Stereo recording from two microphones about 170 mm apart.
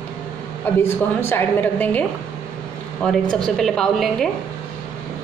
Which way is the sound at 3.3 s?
Centre (ahead or behind).